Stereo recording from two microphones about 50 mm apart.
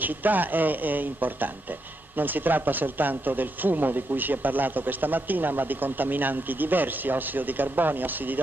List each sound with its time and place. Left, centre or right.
0.0 s speech: right